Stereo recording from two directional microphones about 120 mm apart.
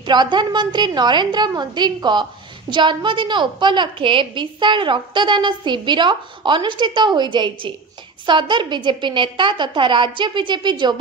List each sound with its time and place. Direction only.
0.0 s a woman's voice: 40° right (ahead or behind)